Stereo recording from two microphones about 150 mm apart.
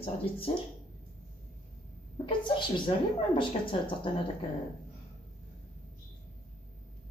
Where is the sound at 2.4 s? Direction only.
35° left (ahead or behind).